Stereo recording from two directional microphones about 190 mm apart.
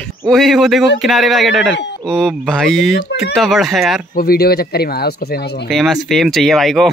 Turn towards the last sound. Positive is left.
turn(degrees=0)  # may be behind; listen again after turning